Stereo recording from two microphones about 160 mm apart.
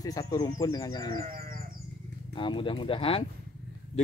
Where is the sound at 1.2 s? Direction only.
65° right (ahead or behind).